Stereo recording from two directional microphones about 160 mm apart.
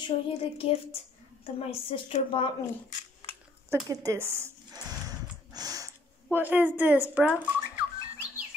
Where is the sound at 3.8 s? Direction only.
20° right (ahead or behind).